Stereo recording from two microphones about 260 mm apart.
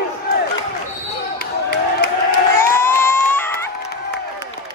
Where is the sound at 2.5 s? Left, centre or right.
Centre.